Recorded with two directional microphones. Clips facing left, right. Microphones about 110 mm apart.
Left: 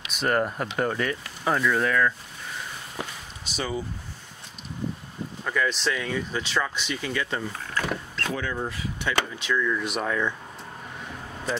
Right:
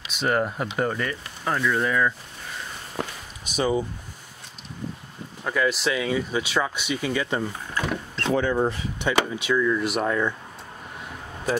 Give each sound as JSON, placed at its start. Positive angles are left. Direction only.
{"t": 0.1, "sound": "speech", "side_deg": 0}
{"t": 3.4, "sound": "speech", "side_deg": -15}
{"t": 5.4, "sound": "speech", "side_deg": -10}